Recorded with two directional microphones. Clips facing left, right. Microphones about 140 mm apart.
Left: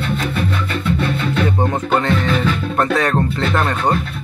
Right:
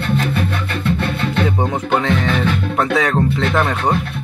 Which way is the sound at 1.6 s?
Centre (ahead or behind).